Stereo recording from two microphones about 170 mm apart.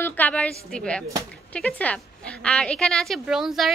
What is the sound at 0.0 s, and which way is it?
A woman's voice, 10° left (ahead or behind).